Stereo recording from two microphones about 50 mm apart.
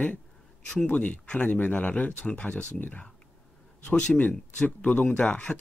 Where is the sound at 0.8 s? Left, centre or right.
Left.